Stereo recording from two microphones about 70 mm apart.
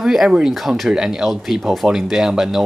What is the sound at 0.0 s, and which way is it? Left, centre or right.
Speech, centre.